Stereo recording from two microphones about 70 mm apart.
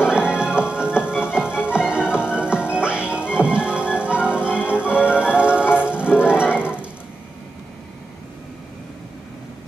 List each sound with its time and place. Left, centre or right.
0.0 s music: centre